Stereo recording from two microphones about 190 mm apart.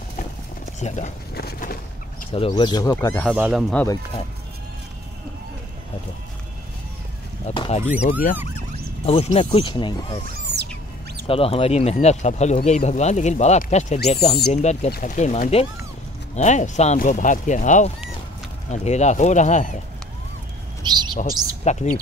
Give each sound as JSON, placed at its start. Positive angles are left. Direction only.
{"t": 0.7, "sound": "speech", "side_deg": 40}
{"t": 1.3, "sound": "a sound", "side_deg": 50}
{"t": 2.3, "sound": "speech", "side_deg": 25}
{"t": 3.3, "sound": "speech", "side_deg": -5}
{"t": 3.7, "sound": "speech", "side_deg": 15}
{"t": 7.4, "sound": "speech", "side_deg": 30}
{"t": 8.0, "sound": "speech", "side_deg": 45}
{"t": 8.5, "sound": "speech", "side_deg": 30}
{"t": 10.3, "sound": "owl", "side_deg": -60}
{"t": 11.2, "sound": "speech", "side_deg": 30}
{"t": 20.8, "sound": "speech", "side_deg": -20}
{"t": 21.3, "sound": "speech", "side_deg": 45}